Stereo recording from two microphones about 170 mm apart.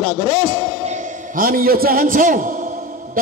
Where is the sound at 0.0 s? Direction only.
35° right (ahead or behind).